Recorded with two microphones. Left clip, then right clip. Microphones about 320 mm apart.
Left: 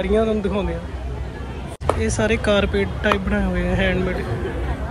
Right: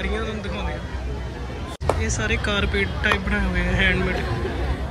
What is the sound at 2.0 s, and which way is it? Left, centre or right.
Speech, centre.